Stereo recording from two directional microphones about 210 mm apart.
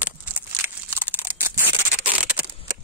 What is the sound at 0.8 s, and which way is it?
Scissors, 10° right (ahead or behind).